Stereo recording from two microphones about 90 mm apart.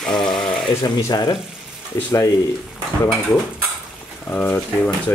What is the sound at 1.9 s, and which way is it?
Speech, 30° left (ahead or behind).